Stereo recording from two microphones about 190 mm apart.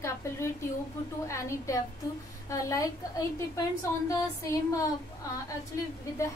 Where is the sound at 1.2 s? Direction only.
15° left (ahead or behind).